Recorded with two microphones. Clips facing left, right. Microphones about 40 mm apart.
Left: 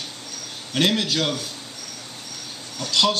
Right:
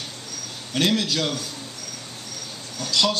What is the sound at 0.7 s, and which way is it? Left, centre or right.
Speech, centre.